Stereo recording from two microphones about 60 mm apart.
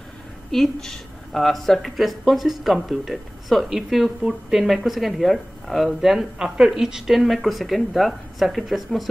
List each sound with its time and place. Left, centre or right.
0.5 s speech: centre